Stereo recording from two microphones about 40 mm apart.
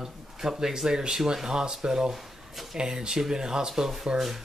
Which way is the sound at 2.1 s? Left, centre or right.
Centre.